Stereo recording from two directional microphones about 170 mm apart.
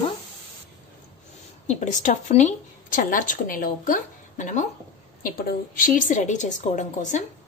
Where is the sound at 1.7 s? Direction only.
45° left (ahead or behind).